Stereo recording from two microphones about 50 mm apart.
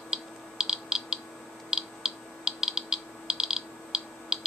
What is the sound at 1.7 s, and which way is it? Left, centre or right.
Computer keyboard, centre.